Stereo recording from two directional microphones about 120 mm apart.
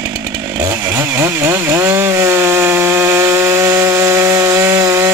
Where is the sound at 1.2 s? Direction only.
20° right (ahead or behind).